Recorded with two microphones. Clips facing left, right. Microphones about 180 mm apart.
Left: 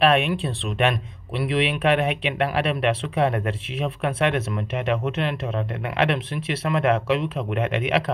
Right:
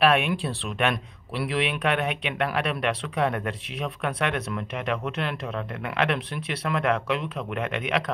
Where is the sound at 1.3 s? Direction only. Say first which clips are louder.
Left 3 dB; 25° left (ahead or behind).